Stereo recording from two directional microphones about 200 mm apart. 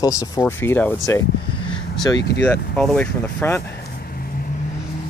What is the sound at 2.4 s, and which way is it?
Speech, 5° left (ahead or behind).